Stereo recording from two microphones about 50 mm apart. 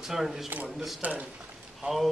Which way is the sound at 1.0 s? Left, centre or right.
Right.